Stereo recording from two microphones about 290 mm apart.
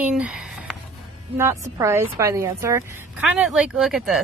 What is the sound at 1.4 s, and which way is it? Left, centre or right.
A woman's voice, centre.